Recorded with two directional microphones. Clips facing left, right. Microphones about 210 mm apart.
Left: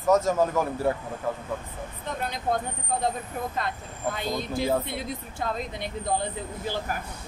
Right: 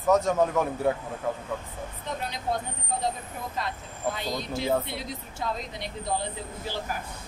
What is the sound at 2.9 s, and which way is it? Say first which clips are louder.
Speech: left 3 dB; 55° left (ahead or behind).